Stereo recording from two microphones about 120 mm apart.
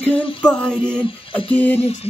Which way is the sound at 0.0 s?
15° left (ahead or behind).